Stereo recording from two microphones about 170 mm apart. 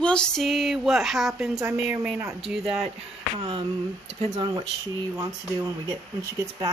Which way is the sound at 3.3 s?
30° right (ahead or behind).